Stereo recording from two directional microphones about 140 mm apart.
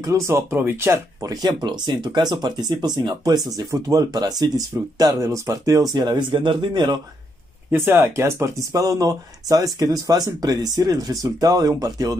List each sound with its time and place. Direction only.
0.0 s speech: 20° right (ahead or behind)
7.7 s speech: 15° right (ahead or behind)